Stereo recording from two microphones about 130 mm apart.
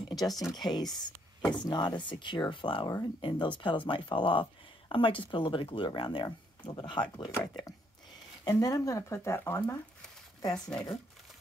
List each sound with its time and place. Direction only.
0.1 s a sound: 30° left (ahead or behind)
0.6 s speech: 30° left (ahead or behind)
8.5 s speech: 30° left (ahead or behind)
10.7 s speech: 5° left (ahead or behind)